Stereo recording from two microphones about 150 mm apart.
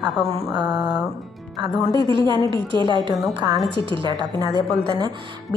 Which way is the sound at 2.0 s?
35° right (ahead or behind).